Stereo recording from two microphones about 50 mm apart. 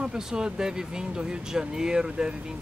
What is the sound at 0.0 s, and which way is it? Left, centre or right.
Speech, centre.